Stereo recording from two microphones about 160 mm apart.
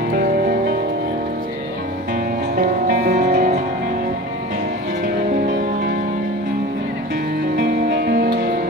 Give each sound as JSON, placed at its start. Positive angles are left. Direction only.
{"t": 0.1, "sound": "music", "side_deg": -70}
{"t": 2.5, "sound": "music", "side_deg": -65}
{"t": 3.3, "sound": "music", "side_deg": -50}
{"t": 7.5, "sound": "music", "side_deg": -80}